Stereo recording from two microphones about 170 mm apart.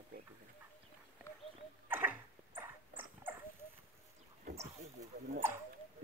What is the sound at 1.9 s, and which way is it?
Dog, 10° right (ahead or behind).